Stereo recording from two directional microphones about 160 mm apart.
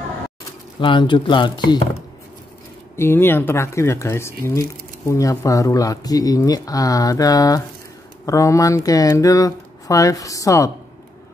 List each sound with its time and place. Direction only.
0.7 s speech: 30° left (ahead or behind)
3.0 s speech: 15° left (ahead or behind)